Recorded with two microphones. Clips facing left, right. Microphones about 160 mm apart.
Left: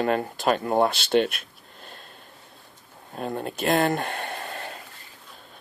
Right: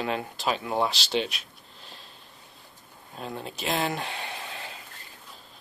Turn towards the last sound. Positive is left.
turn(degrees=50)  # may be behind; listen again after turning